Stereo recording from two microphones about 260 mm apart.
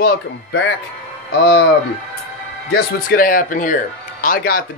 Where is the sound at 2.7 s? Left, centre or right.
Left.